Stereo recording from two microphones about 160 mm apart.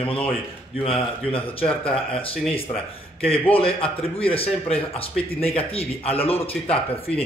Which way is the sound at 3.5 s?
35° left (ahead or behind).